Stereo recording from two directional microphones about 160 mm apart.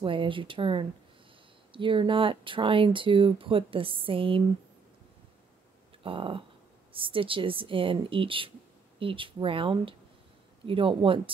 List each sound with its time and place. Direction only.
0.0 s speech: 35° right (ahead or behind)
6.0 s speech: 35° right (ahead or behind)